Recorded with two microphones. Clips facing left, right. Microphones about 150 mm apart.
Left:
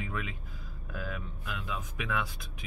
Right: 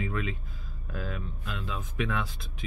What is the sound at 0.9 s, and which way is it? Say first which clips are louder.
Speech: right 2 dB; 10° left (ahead or behind).